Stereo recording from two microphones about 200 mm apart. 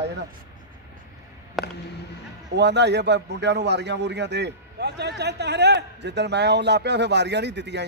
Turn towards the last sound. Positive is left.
turn(degrees=-60)  # may be behind; listen again after turning